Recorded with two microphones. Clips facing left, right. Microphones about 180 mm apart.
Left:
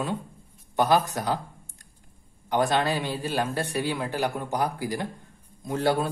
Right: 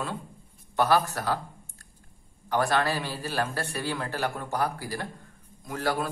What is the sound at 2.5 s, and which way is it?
Speech, 20° left (ahead or behind).